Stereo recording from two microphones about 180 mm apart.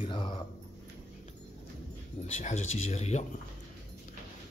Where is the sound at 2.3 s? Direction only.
40° left (ahead or behind).